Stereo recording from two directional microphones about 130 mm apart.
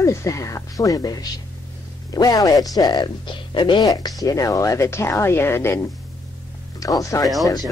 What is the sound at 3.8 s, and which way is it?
Speech, 25° left (ahead or behind).